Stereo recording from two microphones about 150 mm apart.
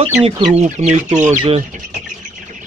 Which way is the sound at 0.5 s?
50° right (ahead or behind).